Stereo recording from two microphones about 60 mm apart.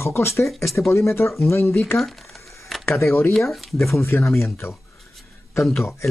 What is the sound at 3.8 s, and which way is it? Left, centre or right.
Speech, left.